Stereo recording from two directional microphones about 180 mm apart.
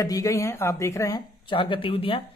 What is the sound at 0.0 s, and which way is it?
Speech, 20° left (ahead or behind).